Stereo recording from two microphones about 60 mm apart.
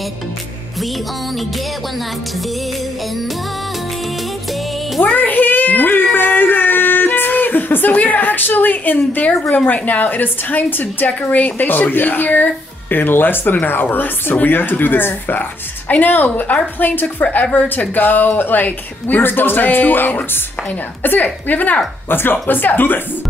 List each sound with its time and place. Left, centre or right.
5.0 s cat: left
6.1 s a sound: left
8.9 s a woman's voice: left